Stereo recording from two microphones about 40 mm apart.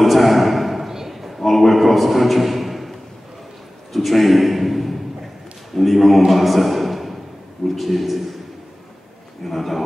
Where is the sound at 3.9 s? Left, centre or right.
Centre.